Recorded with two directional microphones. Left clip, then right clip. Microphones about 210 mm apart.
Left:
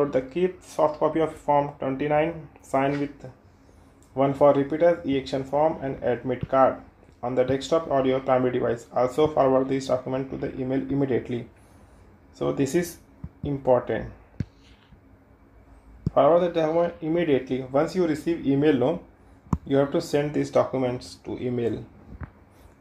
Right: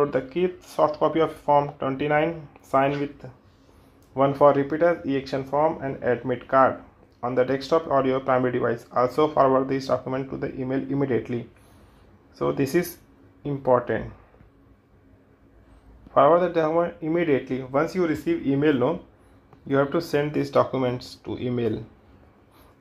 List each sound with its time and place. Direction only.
0.0 s speech: 15° right (ahead or behind)
12.4 s speech: 15° right (ahead or behind)
16.1 s speech: 15° right (ahead or behind)